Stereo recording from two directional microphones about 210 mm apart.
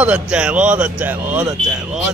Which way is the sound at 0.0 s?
5° right (ahead or behind).